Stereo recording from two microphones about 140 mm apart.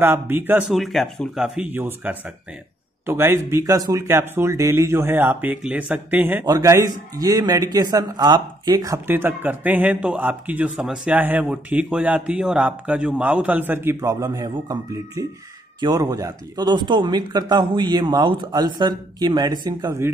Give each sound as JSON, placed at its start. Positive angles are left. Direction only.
{"t": 0.0, "sound": "speech", "side_deg": -15}
{"t": 0.7, "sound": "a man's voice", "side_deg": 0}
{"t": 6.4, "sound": "a man's voice", "side_deg": -25}
{"t": 9.0, "sound": "speech", "side_deg": -15}